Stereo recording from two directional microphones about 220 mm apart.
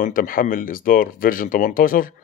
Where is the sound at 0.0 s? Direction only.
40° left (ahead or behind).